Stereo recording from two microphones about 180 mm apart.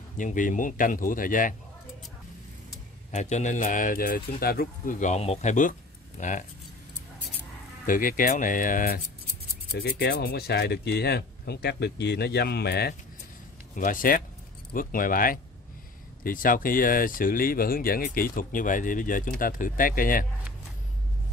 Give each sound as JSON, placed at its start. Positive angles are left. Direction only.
{"t": 0.2, "sound": "speech", "side_deg": 45}
{"t": 3.1, "sound": "speech", "side_deg": 40}
{"t": 7.8, "sound": "speech", "side_deg": 50}
{"t": 13.7, "sound": "speech", "side_deg": 50}